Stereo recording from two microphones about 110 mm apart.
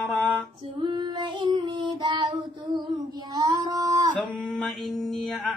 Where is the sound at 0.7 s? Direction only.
45° right (ahead or behind).